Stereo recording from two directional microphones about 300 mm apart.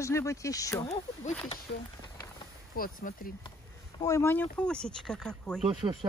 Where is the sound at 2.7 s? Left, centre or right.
Left.